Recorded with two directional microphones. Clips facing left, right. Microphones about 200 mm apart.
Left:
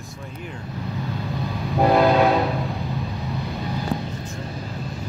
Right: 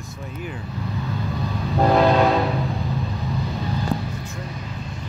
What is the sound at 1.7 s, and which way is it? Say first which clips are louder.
Train: even; 5° left (ahead or behind).